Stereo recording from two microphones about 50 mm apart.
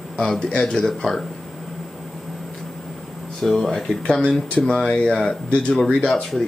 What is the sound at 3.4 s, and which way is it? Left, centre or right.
Speech, centre.